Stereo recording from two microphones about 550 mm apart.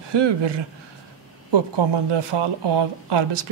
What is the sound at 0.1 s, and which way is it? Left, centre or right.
Speech, right.